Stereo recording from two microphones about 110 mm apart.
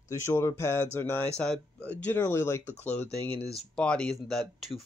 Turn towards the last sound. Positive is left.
turn(degrees=0)  # may be behind; listen again after turning